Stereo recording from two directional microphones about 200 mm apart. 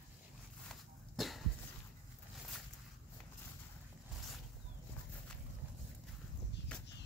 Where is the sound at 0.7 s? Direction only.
Centre (ahead or behind).